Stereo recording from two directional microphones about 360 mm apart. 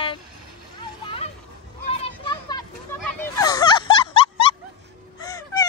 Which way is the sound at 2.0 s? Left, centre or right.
Centre.